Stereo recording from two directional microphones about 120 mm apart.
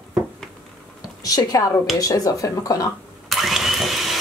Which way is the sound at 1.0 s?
30° left (ahead or behind).